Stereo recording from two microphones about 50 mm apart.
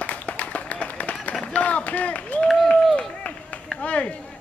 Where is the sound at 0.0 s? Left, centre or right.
Left.